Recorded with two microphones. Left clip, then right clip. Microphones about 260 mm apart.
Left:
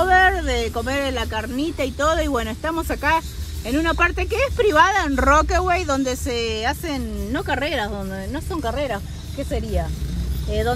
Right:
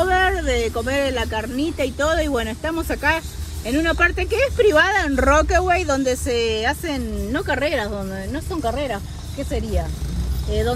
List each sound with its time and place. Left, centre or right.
0.0 s speech: left
8.7 s speech: left